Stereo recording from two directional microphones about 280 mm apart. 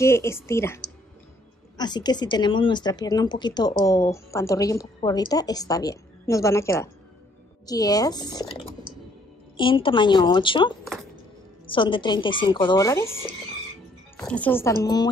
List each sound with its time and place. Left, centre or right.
0.0 s a woman's voice: centre
1.8 s a woman's voice: centre